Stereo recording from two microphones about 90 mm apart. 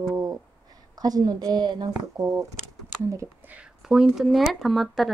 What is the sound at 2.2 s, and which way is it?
Speech, 35° right (ahead or behind).